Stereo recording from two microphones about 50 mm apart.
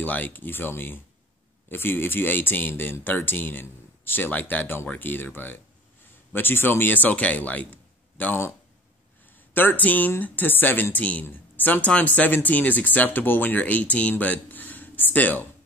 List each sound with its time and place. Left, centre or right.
0.0 s speech: left
9.5 s speech: left
14.2 s a sound: left